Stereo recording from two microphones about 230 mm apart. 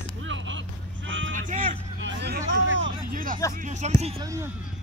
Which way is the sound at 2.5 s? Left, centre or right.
Right.